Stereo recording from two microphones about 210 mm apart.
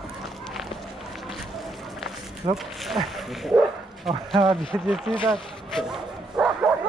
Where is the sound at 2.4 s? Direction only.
25° right (ahead or behind).